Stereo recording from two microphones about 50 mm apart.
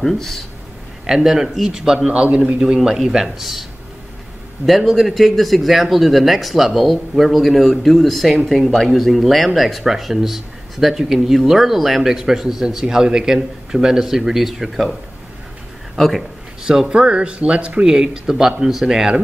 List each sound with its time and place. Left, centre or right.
0.0 s speech: centre
1.0 s speech: centre
4.6 s speech: centre
16.0 s a man's voice: centre
16.6 s speech: centre